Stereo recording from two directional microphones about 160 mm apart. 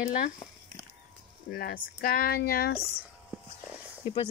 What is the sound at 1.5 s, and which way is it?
Speech, 70° left (ahead or behind).